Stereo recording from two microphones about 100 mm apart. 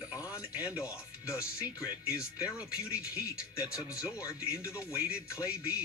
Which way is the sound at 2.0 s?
10° right (ahead or behind).